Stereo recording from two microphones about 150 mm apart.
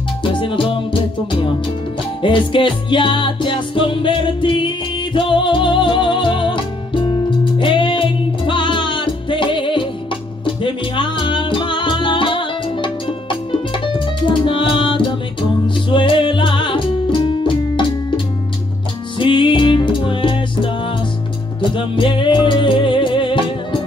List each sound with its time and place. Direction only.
0.2 s music: 35° left (ahead or behind)